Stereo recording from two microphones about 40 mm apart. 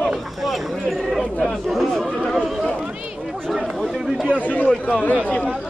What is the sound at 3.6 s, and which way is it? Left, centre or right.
Speech, centre.